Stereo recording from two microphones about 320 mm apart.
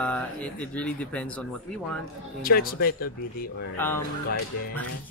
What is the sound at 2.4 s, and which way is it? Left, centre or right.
Speech, left.